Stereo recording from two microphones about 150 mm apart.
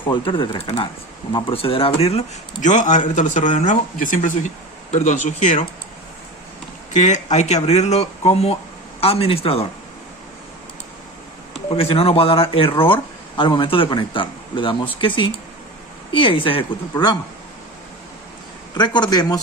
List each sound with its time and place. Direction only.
0.0 s speech: 30° left (ahead or behind); by 5.7 s 50° left (ahead or behind)
6.9 s speech: 50° left (ahead or behind)
11.7 s speech: 40° left (ahead or behind)
18.8 s speech: 30° left (ahead or behind)